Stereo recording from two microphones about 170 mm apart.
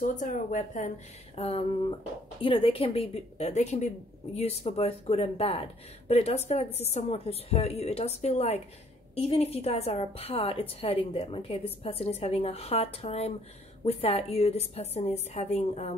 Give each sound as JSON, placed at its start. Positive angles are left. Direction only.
{"t": 0.0, "sound": "a woman's voice", "side_deg": 50}